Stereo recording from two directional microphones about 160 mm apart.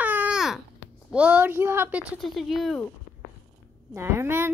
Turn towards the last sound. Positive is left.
turn(degrees=-15)  # may be behind; listen again after turning